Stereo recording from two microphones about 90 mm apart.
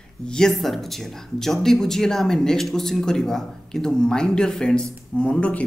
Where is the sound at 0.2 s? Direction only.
5° left (ahead or behind).